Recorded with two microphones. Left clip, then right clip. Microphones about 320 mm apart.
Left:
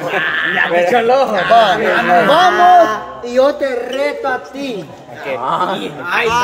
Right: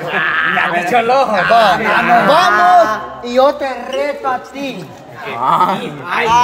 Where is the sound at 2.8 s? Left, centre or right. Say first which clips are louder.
Even; centre.